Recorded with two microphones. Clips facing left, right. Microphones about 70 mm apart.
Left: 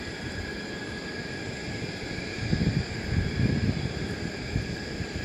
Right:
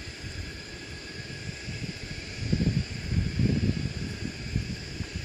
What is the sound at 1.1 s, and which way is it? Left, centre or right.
Vehicle, left.